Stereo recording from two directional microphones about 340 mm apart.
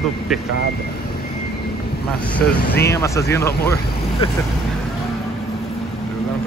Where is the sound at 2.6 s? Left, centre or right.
Left.